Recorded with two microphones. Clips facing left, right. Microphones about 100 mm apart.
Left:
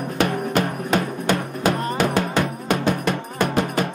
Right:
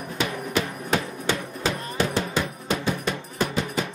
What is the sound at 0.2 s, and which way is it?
Music, 55° left (ahead or behind).